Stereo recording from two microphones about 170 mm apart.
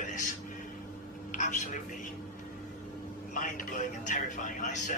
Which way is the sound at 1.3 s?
45° left (ahead or behind).